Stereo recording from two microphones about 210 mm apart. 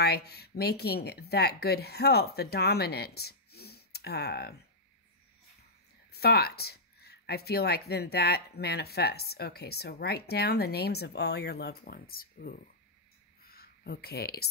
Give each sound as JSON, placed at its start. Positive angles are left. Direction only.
{"t": 0.0, "sound": "speech", "side_deg": 50}
{"t": 6.1, "sound": "speech", "side_deg": 50}
{"t": 13.4, "sound": "a sound", "side_deg": 45}